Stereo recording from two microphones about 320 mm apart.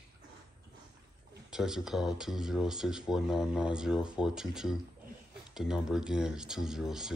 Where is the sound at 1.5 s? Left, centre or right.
Centre.